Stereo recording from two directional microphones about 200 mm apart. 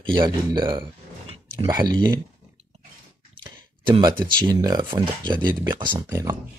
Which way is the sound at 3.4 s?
25° right (ahead or behind).